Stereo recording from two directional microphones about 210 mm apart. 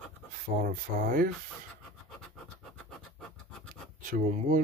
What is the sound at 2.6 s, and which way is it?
Scratch, 5° left (ahead or behind).